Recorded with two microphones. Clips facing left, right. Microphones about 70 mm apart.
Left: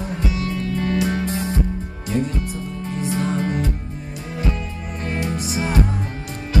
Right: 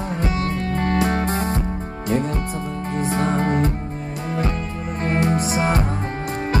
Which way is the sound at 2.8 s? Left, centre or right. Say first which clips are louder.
Right 2 dB; right.